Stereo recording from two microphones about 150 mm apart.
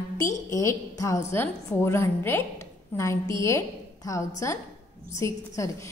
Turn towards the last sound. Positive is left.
turn(degrees=20)  # may be behind; listen again after turning